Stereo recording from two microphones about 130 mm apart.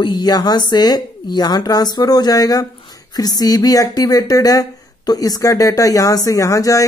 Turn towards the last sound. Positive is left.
turn(degrees=25)  # may be behind; listen again after turning